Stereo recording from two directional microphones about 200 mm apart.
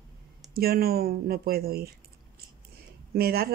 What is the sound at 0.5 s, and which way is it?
Speech, 50° right (ahead or behind).